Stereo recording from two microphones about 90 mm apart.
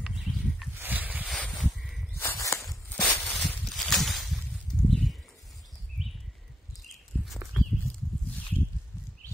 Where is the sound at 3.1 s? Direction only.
Centre (ahead or behind).